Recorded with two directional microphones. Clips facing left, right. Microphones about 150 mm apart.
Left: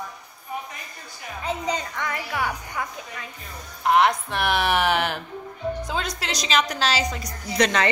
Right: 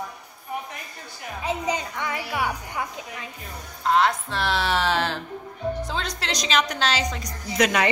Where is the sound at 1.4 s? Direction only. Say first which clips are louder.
Right 1 dB; 15° right (ahead or behind).